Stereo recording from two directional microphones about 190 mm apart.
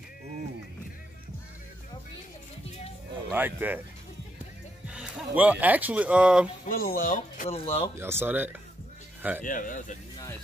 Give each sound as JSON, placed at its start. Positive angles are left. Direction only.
{"t": 3.3, "sound": "speech", "side_deg": -10}
{"t": 4.8, "sound": "speech", "side_deg": -5}
{"t": 6.6, "sound": "speech", "side_deg": 50}
{"t": 7.4, "sound": "speech", "side_deg": 30}
{"t": 8.0, "sound": "speech", "side_deg": -10}
{"t": 9.4, "sound": "speech", "side_deg": 45}